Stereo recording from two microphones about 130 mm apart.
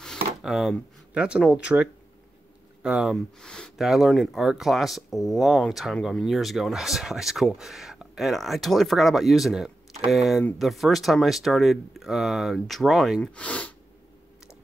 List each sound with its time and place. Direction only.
0.0 s speech: centre (ahead or behind)
3.3 s speech: 5° left (ahead or behind)